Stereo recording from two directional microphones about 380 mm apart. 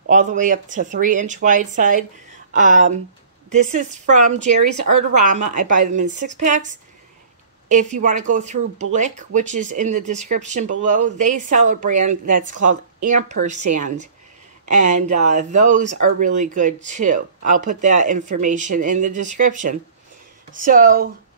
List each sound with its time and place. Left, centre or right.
0.0 s speech: centre
12.5 s speech: right
13.1 s speech: centre
19.1 s speech: right
19.4 s speech: right